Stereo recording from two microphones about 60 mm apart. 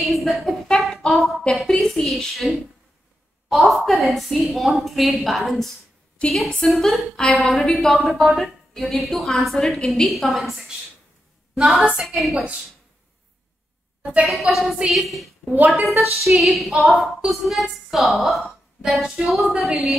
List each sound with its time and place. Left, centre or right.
0.1 s a sound: centre
3.4 s a woman's voice: centre
6.2 s a woman's voice: centre
11.9 s a woman's voice: centre
14.2 s a woman's voice: centre
15.5 s a woman's voice: right
16.2 s a woman's voice: centre